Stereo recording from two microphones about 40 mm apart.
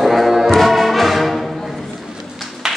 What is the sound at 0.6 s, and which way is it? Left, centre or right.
Music, centre.